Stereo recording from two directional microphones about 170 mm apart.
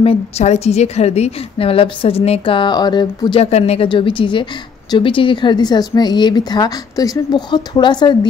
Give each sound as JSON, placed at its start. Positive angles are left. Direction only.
{"t": 0.0, "sound": "a woman's voice", "side_deg": 40}